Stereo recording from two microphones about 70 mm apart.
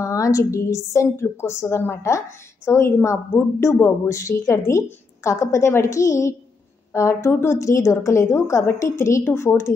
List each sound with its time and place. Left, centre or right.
0.0 s a woman's voice: left